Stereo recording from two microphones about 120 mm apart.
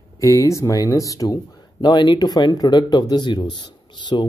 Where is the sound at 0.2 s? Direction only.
25° left (ahead or behind).